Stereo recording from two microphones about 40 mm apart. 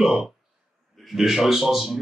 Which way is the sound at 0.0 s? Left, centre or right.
Centre.